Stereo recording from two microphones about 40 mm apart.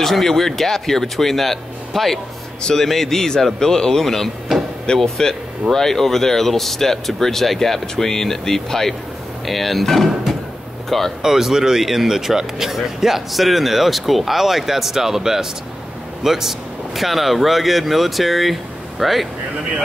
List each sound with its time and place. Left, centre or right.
0.0 s speech: centre
4.9 s speech: centre
11.2 s speech: centre